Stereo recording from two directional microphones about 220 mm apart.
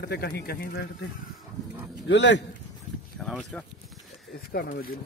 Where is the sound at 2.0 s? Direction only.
55° left (ahead or behind).